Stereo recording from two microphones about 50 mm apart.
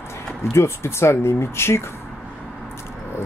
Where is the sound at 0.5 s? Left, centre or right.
Left.